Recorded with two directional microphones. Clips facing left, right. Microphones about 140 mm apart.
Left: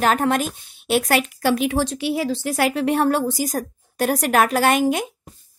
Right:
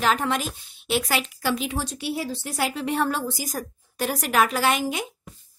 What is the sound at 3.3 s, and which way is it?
Speech, 50° left (ahead or behind).